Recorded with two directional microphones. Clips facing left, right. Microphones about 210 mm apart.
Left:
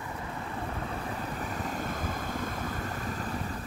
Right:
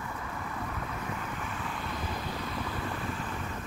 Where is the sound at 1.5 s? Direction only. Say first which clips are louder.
Left 3 dB; 45° left (ahead or behind).